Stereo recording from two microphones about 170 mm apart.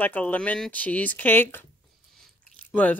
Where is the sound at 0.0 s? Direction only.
10° left (ahead or behind).